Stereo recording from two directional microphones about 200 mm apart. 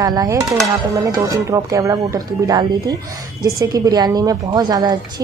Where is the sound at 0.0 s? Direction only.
15° right (ahead or behind).